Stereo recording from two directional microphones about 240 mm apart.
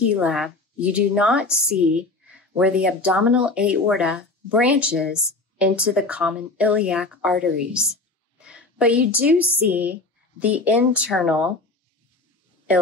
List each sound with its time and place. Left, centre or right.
0.0 s a woman's voice: centre